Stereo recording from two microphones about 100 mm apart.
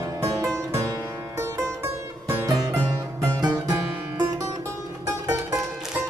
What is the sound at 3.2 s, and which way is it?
Music, 40° right (ahead or behind).